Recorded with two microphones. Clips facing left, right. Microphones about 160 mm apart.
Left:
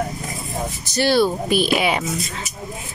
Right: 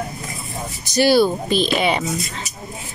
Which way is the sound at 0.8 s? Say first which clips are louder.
Right 4 dB; 15° right (ahead or behind).